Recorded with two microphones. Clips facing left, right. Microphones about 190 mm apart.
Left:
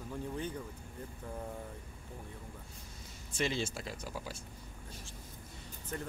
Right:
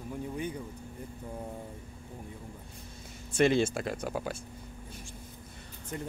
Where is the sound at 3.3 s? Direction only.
55° right (ahead or behind).